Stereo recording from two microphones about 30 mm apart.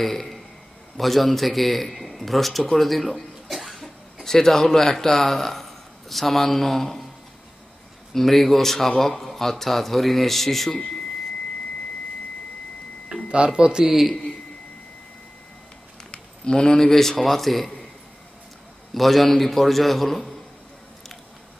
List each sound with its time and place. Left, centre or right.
0.0 s a man's voice: centre
3.4 s cough: centre
4.2 s a man's voice: centre
8.1 s speech: centre
13.1 s a sound: right
13.5 s speech: right
13.8 s a man's voice: centre
16.1 s a sound: left
16.7 s a man's voice: centre
18.9 s a man's voice: centre